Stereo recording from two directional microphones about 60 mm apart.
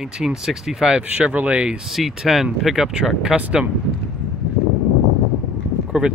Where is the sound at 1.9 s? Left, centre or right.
Centre.